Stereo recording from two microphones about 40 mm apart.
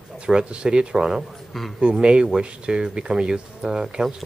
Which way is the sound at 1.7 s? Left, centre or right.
Right.